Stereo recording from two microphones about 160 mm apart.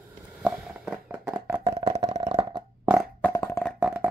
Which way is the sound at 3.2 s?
15° left (ahead or behind).